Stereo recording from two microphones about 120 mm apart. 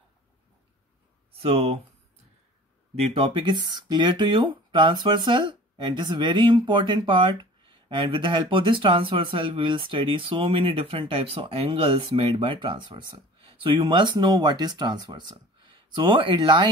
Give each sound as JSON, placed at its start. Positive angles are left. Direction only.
{"t": 1.3, "sound": "speech", "side_deg": -55}
{"t": 3.2, "sound": "speech", "side_deg": -40}